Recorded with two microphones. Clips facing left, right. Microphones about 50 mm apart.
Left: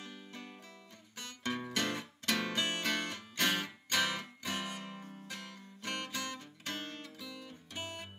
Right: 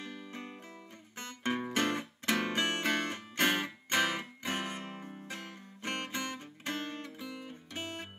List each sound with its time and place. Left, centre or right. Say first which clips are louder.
0.3 s music: right 4 dB; right
1.1 s guitar: right 4 dB; right